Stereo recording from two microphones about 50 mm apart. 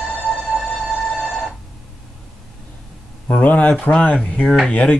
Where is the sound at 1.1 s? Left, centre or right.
Centre.